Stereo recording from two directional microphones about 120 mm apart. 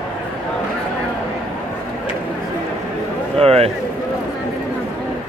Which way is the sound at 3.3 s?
55° right (ahead or behind).